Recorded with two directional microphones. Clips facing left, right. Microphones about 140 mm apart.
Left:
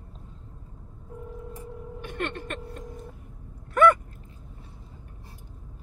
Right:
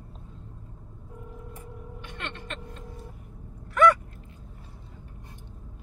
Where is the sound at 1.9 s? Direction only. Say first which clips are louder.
Left 8 dB; 50° left (ahead or behind).